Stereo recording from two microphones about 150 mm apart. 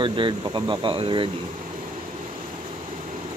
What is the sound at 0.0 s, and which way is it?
Speech, 35° right (ahead or behind).